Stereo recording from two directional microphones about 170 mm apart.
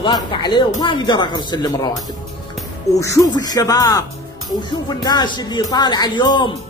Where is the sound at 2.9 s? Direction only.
20° left (ahead or behind).